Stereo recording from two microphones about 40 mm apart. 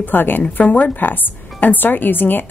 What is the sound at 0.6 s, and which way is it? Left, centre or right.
A woman's voice, left.